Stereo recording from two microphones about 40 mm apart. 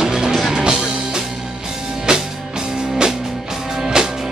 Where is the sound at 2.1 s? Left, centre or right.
Right.